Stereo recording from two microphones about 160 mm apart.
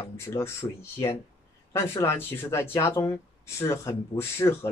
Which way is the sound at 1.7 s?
15° left (ahead or behind).